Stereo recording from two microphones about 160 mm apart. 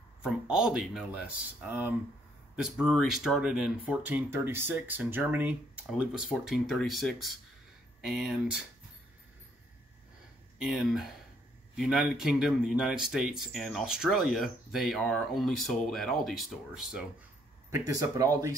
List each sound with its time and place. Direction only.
0.2 s speech: 5° right (ahead or behind)
10.6 s speech: 5° right (ahead or behind)
17.6 s speech: 20° right (ahead or behind)